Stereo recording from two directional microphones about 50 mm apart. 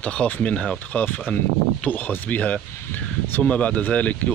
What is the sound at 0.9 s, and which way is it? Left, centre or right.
Speech, left.